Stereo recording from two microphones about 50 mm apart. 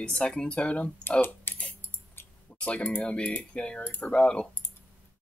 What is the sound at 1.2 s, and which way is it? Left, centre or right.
Typing, left.